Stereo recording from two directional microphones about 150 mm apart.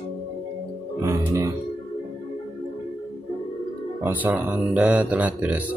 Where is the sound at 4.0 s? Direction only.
10° right (ahead or behind).